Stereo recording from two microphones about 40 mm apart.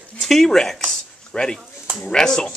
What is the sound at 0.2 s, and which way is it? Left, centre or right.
Zipper, centre.